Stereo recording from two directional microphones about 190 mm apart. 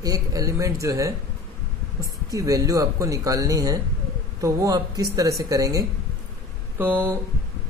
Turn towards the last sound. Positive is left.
turn(degrees=-10)  # may be behind; listen again after turning